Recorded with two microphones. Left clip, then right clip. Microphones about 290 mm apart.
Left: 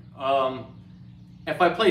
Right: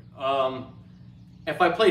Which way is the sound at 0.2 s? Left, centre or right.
Centre.